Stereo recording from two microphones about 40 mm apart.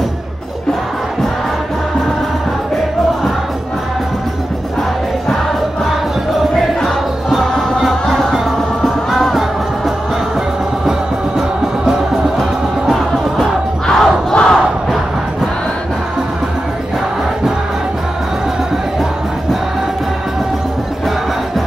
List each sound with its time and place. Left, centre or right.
7.8 s music: centre
10.9 s music: centre
13.8 s crowd: centre